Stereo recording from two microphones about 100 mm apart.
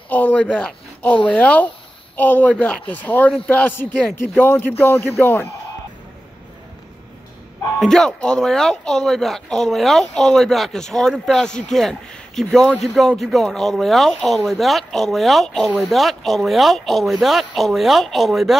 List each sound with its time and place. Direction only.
0.1 s speech: 15° left (ahead or behind)
7.8 s speech: 5° left (ahead or behind)